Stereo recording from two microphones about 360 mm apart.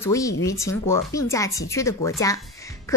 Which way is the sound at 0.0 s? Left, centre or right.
Centre.